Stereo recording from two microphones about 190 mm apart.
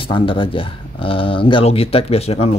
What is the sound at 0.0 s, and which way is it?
Speech, 25° left (ahead or behind).